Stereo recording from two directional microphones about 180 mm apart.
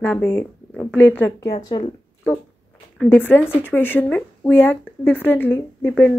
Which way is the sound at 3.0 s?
10° left (ahead or behind).